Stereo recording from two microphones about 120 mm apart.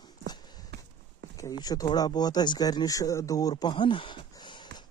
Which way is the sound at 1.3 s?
30° left (ahead or behind).